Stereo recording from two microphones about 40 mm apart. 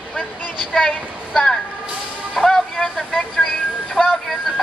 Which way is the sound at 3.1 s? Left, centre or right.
Centre.